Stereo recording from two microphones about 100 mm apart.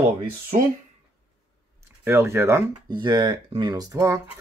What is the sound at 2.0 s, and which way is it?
Speech, 25° right (ahead or behind).